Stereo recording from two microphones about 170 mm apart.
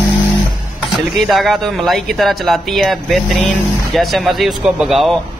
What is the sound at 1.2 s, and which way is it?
Speech, centre (ahead or behind).